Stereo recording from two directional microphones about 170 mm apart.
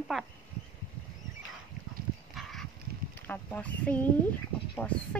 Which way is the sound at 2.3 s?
Centre (ahead or behind).